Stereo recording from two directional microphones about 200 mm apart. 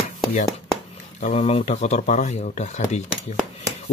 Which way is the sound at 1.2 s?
35° left (ahead or behind).